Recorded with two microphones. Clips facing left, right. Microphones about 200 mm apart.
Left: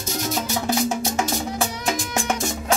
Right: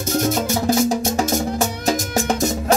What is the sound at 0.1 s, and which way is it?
Music, 50° right (ahead or behind).